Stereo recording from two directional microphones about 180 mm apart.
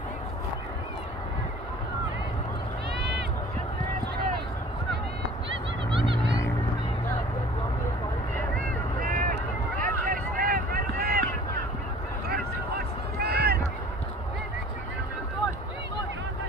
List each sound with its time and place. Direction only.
9.0 s vehicle: 55° right (ahead or behind)
9.8 s run: 50° right (ahead or behind)
12.3 s a sound: 60° right (ahead or behind)